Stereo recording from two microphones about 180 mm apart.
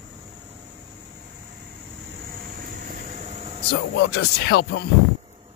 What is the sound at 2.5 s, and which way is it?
Vehicle, 55° right (ahead or behind).